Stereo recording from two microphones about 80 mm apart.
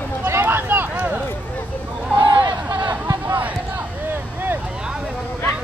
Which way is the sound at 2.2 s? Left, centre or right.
Right.